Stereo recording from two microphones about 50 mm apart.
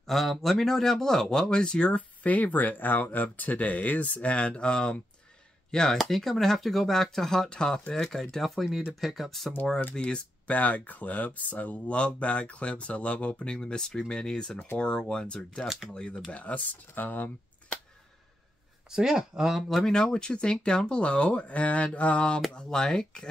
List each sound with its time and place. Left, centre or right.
0.0 s speech: centre
9.9 s speech: left
15.6 s speech: centre
15.9 s speech: centre; by 17.3 s left
18.9 s speech: centre
19.9 s speech: centre